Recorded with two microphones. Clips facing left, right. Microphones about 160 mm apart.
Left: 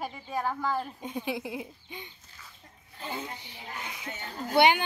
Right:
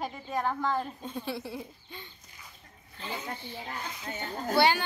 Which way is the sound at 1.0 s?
15° left (ahead or behind).